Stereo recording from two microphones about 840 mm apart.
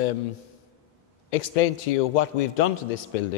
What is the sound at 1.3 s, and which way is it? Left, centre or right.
A man's voice, left.